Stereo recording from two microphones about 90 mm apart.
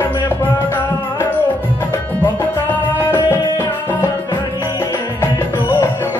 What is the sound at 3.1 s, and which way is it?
Music, 25° left (ahead or behind).